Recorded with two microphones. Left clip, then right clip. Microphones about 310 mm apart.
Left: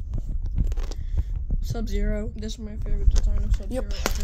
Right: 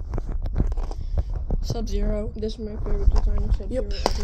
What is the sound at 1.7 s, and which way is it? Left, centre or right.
Speech, centre.